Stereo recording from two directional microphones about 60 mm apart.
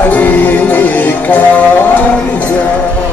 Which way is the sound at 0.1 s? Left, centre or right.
Left.